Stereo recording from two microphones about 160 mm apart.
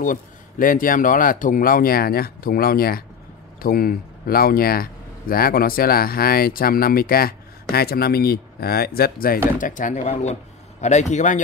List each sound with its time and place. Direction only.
0.0 s speech: 55° left (ahead or behind)
9.6 s speech: 55° left (ahead or behind)